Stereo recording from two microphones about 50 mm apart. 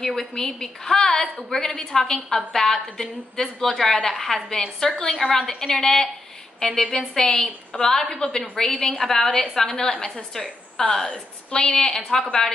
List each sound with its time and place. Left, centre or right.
0.0 s a woman's voice: centre